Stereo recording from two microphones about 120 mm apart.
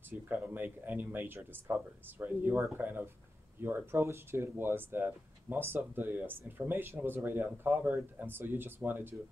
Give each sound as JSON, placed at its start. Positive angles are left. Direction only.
{"t": 0.1, "sound": "speech", "side_deg": -15}